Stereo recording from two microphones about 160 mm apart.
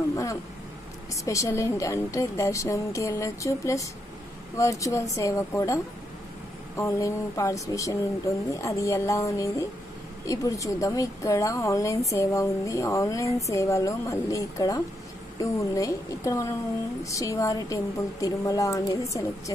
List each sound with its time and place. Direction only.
0.1 s a woman's voice: 20° left (ahead or behind)
6.8 s a woman's voice: 20° left (ahead or behind)